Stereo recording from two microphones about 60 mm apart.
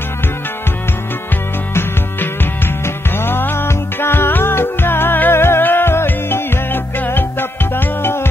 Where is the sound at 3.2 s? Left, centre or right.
Left.